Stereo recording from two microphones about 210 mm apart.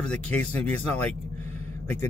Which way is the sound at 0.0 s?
5° left (ahead or behind).